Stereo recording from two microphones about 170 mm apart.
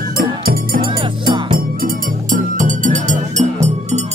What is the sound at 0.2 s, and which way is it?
Music, 55° right (ahead or behind).